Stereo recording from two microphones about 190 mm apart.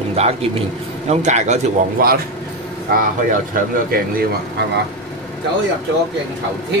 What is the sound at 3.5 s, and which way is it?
Speech, 50° right (ahead or behind).